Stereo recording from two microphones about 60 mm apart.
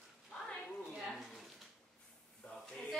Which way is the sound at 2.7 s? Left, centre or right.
Centre.